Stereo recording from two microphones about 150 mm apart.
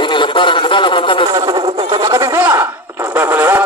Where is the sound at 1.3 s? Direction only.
30° right (ahead or behind).